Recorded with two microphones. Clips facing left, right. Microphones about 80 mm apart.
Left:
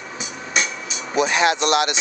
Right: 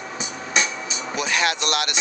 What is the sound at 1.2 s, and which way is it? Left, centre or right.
Speech, left.